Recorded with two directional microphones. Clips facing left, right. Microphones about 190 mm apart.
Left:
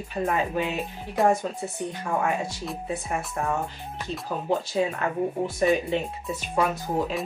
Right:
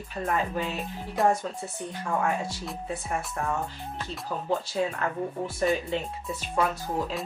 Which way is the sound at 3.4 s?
10° left (ahead or behind).